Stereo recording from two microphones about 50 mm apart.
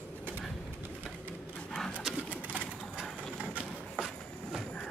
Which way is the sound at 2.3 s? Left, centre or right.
Right.